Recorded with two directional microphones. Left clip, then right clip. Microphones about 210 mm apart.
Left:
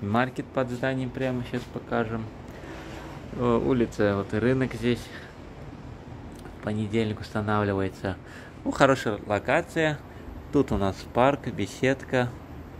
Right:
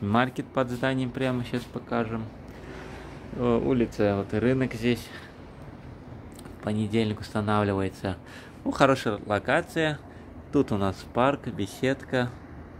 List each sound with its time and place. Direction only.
0.1 s speech: 10° right (ahead or behind)
1.9 s speech: 5° right (ahead or behind)
3.3 s speech: 5° right (ahead or behind)
6.6 s speech: 10° right (ahead or behind)